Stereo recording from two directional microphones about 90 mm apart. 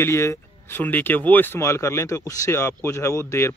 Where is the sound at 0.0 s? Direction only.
30° left (ahead or behind).